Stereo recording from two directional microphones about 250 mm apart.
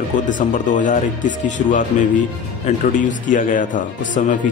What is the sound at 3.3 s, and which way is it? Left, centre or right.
Speech, left.